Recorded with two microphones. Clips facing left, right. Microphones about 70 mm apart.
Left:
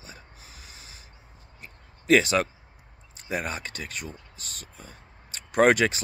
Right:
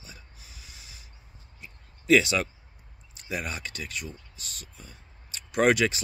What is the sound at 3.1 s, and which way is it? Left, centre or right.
Speech, left.